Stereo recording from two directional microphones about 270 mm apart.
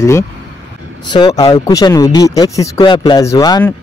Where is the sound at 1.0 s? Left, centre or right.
Centre.